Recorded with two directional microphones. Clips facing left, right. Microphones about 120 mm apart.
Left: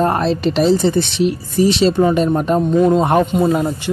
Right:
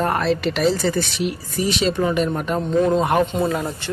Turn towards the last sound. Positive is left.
turn(degrees=10)  # may be behind; listen again after turning